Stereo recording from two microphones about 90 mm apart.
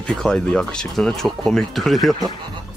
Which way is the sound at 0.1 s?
10° left (ahead or behind).